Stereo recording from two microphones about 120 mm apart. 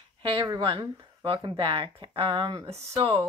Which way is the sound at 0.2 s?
40° right (ahead or behind).